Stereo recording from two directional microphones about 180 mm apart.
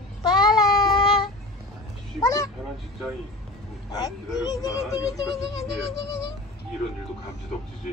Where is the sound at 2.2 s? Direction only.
20° left (ahead or behind).